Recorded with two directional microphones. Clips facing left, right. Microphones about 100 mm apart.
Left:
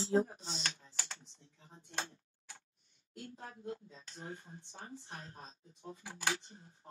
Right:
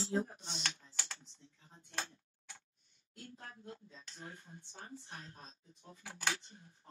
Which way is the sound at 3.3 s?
20° left (ahead or behind).